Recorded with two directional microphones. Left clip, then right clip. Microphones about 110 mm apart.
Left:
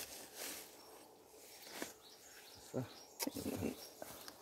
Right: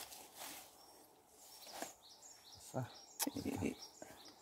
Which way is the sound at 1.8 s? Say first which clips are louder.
Left 1 dB; 15° right (ahead or behind).